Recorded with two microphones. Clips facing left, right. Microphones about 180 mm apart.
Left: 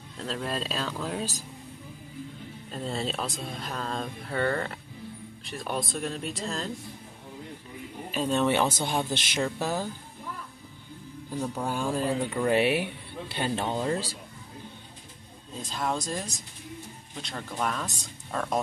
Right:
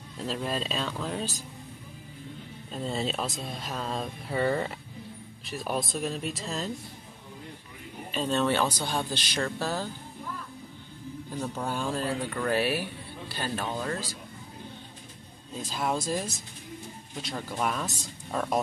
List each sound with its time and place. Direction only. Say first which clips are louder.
0.2 s speech: right 1 dB; 5° right (ahead or behind)
2.7 s speech: right 1 dB; centre (ahead or behind)
8.1 s speech: left 1 dB; 10° left (ahead or behind)
11.4 s speech: left 2 dB; 10° left (ahead or behind)
12.4 s speech: left 3 dB; 25° left (ahead or behind)
15.6 s speech: right 1 dB; 5° right (ahead or behind)